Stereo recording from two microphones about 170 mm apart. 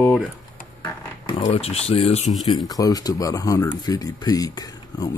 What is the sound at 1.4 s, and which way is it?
Speech, 35° left (ahead or behind).